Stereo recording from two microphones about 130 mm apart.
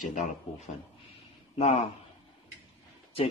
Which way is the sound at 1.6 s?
50° left (ahead or behind).